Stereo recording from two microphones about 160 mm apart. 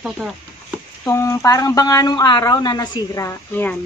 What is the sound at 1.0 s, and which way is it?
Speech, 15° left (ahead or behind).